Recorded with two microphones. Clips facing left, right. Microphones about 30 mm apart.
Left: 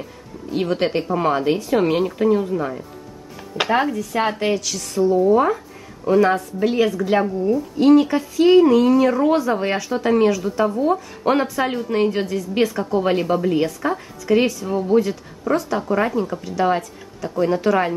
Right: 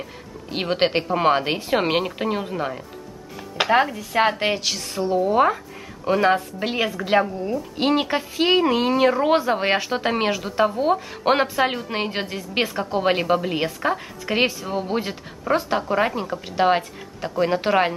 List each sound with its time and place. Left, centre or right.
0.5 s a woman's voice: right
3.7 s a woman's voice: centre
7.7 s a woman's voice: right
15.5 s speech: right
16.4 s a woman's voice: right